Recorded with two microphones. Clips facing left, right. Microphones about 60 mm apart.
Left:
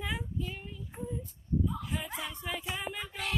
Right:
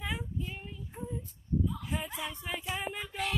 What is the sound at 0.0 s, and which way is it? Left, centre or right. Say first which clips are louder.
Child singing: left 1 dB; centre.